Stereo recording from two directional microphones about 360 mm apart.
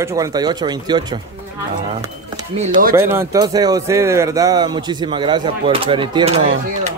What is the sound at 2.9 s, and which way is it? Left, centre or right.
Speech, centre.